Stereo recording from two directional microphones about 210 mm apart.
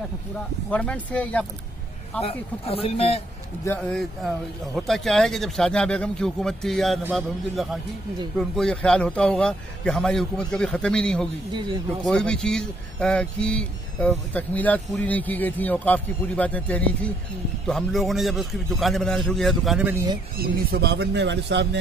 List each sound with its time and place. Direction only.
0.7 s a man's voice: 5° left (ahead or behind)
2.2 s speech: 30° left (ahead or behind)
3.6 s a man's voice: 5° left (ahead or behind); by 20.2 s 10° right (ahead or behind)
20.3 s speech: 45° right (ahead or behind)